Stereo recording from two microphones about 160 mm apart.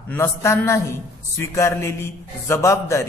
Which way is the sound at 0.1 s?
15° left (ahead or behind).